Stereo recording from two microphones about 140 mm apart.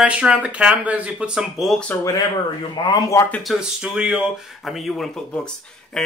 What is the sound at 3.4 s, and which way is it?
Speech, 5° right (ahead or behind).